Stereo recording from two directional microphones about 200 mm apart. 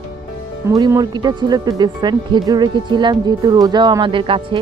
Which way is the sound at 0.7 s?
15° right (ahead or behind).